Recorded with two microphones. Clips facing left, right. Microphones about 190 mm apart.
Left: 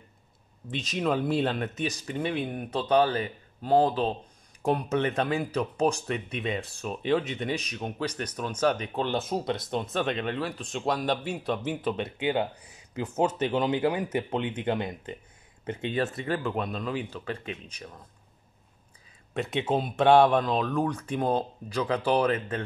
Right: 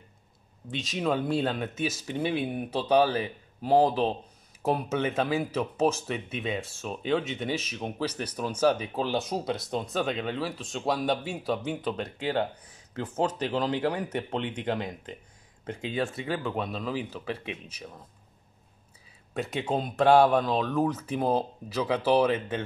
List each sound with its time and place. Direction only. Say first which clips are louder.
0.7 s speech: left 1 dB; centre (ahead or behind)
19.3 s speech: left 2 dB; centre (ahead or behind)